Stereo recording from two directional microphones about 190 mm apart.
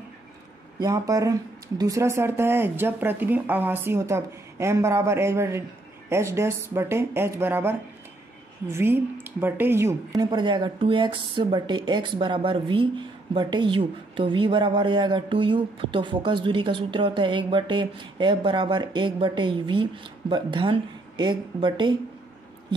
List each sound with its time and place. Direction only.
0.7 s speech: 20° right (ahead or behind)
8.7 s speech: 10° right (ahead or behind)
10.3 s speech: 25° right (ahead or behind)